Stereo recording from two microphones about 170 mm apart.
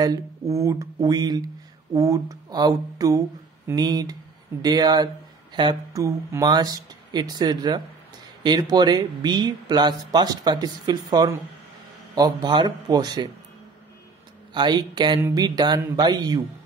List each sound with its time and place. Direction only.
0.0 s speech: 20° right (ahead or behind)
14.5 s speech: 25° right (ahead or behind)